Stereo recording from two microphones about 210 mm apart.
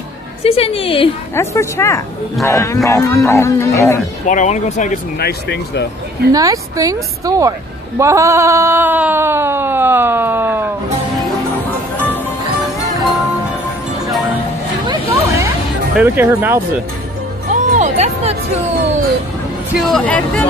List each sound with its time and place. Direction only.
0.4 s a woman's voice: 30° left (ahead or behind)
1.3 s speech: 10° left (ahead or behind)
4.3 s speech: 35° left (ahead or behind)
5.2 s speech: 55° left (ahead or behind)
6.3 s speech: 15° right (ahead or behind)
14.9 s a sound: 15° right (ahead or behind)
16.0 s speech: 10° right (ahead or behind)
17.5 s speech: 35° right (ahead or behind)
19.7 s speech: centre (ahead or behind)